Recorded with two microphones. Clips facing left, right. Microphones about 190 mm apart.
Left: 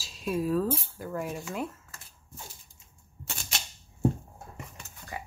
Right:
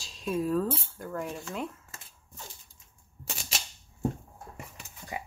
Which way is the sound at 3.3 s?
5° right (ahead or behind).